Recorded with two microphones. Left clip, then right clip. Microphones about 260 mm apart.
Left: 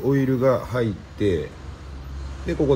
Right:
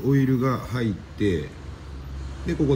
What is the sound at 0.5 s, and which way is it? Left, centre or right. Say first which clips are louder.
Speech: left 7 dB; centre.